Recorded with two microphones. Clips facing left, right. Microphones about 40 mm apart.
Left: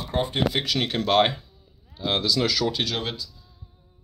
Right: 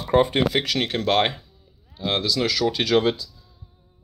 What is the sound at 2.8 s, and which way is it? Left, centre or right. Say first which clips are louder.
Speech: right 5 dB; right.